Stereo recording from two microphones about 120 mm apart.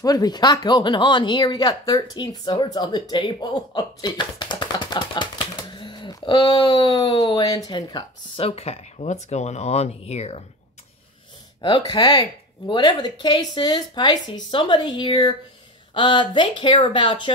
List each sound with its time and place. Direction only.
0.0 s speech: 35° left (ahead or behind); by 7.6 s 50° left (ahead or behind)
7.6 s a woman's voice: 35° left (ahead or behind)
8.4 s speech: 55° left (ahead or behind)
11.9 s a woman's voice: 30° left (ahead or behind)